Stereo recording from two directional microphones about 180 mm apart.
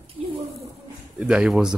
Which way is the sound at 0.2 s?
30° right (ahead or behind).